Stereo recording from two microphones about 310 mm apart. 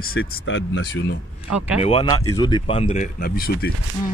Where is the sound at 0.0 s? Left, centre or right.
Left.